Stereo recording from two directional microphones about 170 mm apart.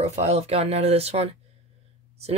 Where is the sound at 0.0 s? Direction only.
40° right (ahead or behind).